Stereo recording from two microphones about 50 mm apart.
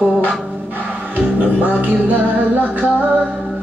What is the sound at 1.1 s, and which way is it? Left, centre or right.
Music, right.